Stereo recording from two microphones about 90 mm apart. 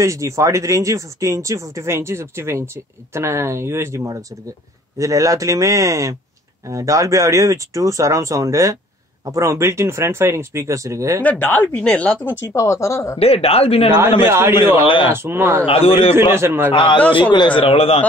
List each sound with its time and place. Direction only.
0.0 s speech: 35° right (ahead or behind)
11.2 s speech: 20° left (ahead or behind)
12.4 s speech: 35° left (ahead or behind)
13.2 s speech: 90° left
14.2 s a man's voice: 30° right (ahead or behind)
14.8 s a man's voice: 70° left (ahead or behind)
15.1 s a man's voice: 25° right (ahead or behind)
15.6 s speech: 90° left
16.2 s a man's voice: 30° right (ahead or behind)
17.1 s speech: 60° left (ahead or behind); by 18.0 s 90° left